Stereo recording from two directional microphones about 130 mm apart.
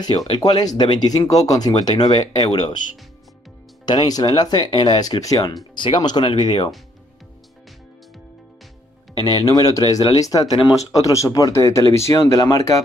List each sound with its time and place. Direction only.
0.0 s speech: 30° left (ahead or behind)
3.8 s speech: 35° left (ahead or behind)
9.3 s speech: 30° left (ahead or behind)